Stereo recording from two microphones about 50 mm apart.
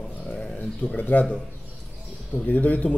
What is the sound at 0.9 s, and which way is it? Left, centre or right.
Speech, left.